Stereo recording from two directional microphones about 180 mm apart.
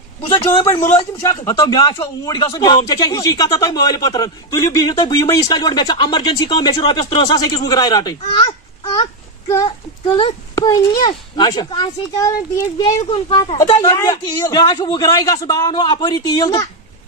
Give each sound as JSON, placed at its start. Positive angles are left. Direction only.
{"t": 1.3, "sound": "speech", "side_deg": 20}